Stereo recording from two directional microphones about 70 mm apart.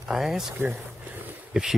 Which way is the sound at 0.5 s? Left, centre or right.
Right.